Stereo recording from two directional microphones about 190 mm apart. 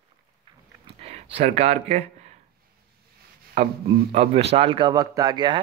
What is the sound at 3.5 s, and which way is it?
A man's voice, 35° right (ahead or behind).